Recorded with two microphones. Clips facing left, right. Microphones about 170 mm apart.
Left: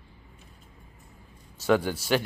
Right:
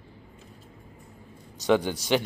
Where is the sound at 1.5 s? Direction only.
20° right (ahead or behind).